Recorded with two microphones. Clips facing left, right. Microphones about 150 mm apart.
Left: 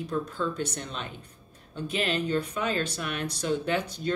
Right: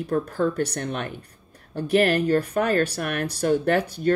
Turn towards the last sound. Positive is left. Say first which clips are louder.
# right 7 dB
turn(degrees=-55)  # may be behind; listen again after turning